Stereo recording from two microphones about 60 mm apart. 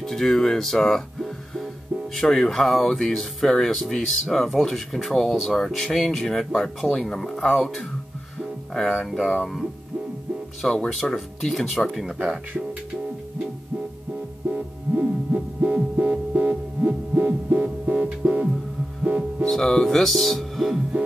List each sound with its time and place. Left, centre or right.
0.0 s speech: centre
14.5 s music: right
19.4 s music: centre